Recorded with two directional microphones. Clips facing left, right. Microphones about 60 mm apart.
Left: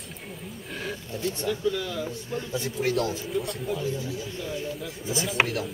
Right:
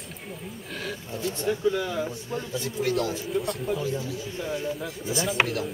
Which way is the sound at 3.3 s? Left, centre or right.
Centre.